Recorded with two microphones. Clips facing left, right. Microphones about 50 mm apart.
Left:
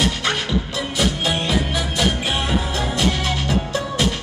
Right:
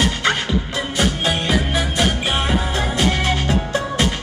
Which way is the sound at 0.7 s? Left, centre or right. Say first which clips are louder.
Right 2 dB; right.